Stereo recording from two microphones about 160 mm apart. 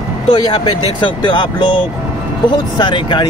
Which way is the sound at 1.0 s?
30° left (ahead or behind).